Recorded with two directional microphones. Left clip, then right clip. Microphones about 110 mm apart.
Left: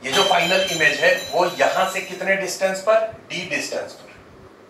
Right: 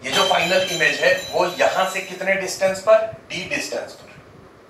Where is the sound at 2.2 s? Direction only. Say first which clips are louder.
Right 1 dB; 5° right (ahead or behind).